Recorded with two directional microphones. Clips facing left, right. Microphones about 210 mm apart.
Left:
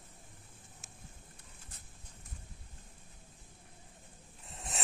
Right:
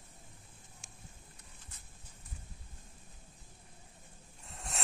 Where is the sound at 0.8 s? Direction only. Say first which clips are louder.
Left 1 dB; 5° left (ahead or behind).